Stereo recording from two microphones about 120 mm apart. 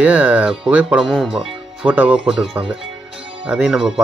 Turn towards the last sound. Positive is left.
turn(degrees=-5)  # may be behind; listen again after turning